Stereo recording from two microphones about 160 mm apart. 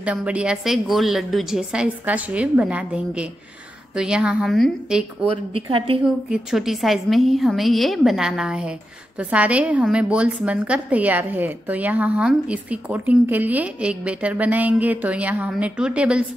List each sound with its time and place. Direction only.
0.0 s a woman's voice: 10° right (ahead or behind)
5.3 s a woman's voice: 35° right (ahead or behind)
6.3 s a woman's voice: centre (ahead or behind)